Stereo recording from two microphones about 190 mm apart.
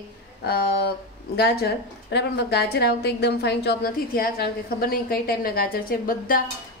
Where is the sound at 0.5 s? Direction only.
60° left (ahead or behind).